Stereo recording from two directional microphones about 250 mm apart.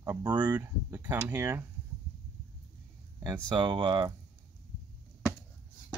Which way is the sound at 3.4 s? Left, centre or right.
Centre.